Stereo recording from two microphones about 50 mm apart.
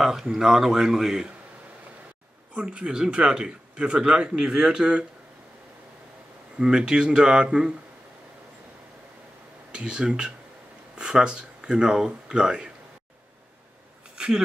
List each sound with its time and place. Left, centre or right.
0.0 s speech: centre
2.5 s speech: centre
6.6 s speech: centre
9.7 s speech: centre
14.1 s a sound: centre